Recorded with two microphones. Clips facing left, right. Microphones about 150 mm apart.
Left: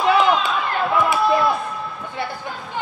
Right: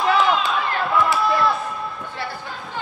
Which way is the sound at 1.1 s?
20° left (ahead or behind).